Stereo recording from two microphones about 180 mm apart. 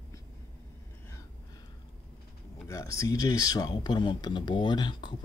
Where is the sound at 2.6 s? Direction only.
20° left (ahead or behind).